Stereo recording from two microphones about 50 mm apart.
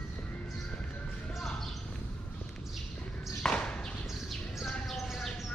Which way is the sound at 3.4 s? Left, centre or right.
Centre.